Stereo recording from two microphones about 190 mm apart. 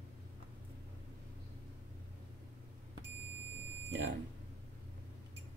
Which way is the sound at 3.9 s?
70° right (ahead or behind).